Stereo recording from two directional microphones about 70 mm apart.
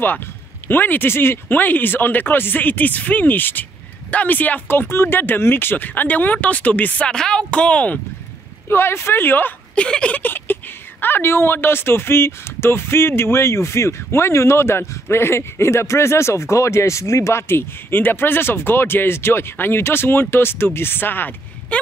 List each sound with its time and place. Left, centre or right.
0.7 s speech: left
8.6 s speech: left
9.8 s speech: centre
10.2 s speech: left